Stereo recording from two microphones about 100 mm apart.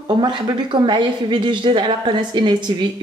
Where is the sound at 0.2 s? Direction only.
50° right (ahead or behind).